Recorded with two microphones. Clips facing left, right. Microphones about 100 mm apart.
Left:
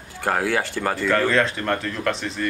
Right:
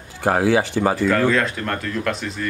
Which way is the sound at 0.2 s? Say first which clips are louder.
Right 5 dB; 15° right (ahead or behind).